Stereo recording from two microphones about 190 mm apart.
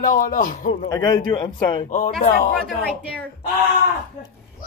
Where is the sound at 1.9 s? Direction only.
40° left (ahead or behind).